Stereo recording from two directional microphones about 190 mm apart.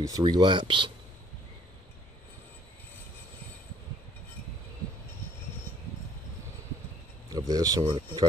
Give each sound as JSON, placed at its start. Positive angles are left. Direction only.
{"t": 0.0, "sound": "speech", "side_deg": -20}
{"t": 7.2, "sound": "speech", "side_deg": -20}